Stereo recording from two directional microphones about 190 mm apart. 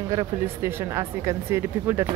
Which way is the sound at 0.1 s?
15° right (ahead or behind).